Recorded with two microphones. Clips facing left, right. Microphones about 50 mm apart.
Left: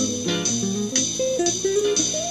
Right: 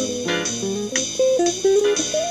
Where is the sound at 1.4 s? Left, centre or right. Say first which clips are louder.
Right 4 dB; right.